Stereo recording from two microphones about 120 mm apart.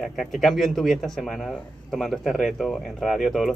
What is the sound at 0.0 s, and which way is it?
Speech, centre (ahead or behind).